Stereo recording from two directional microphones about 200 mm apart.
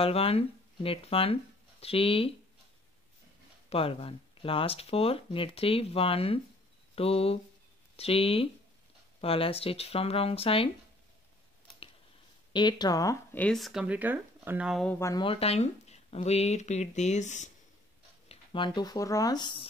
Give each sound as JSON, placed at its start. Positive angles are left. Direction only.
{"t": 0.0, "sound": "speech", "side_deg": 30}
{"t": 3.7, "sound": "speech", "side_deg": 30}
{"t": 12.5, "sound": "speech", "side_deg": 20}
{"t": 15.0, "sound": "speech", "side_deg": 15}
{"t": 15.2, "sound": "speech", "side_deg": 30}
{"t": 18.3, "sound": "speech", "side_deg": 25}